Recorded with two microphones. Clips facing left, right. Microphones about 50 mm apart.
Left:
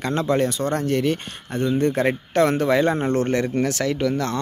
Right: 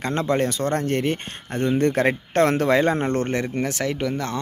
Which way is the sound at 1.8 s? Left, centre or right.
Right.